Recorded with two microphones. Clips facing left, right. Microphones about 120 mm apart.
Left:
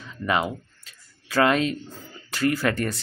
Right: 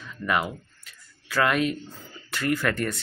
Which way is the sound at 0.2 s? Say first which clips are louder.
Left 2 dB; 20° left (ahead or behind).